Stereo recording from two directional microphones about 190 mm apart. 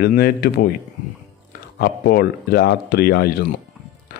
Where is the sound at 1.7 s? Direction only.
55° left (ahead or behind).